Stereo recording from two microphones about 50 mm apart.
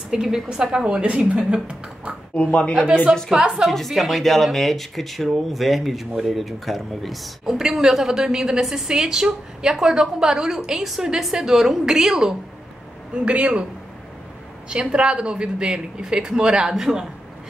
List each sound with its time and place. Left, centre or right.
0.1 s speech: centre
2.3 s speech: left
2.7 s a man's voice: right
3.6 s speech: centre
13.1 s a man's voice: right
14.7 s speech: right